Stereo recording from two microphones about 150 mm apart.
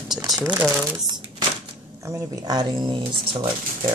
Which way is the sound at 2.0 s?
20° right (ahead or behind).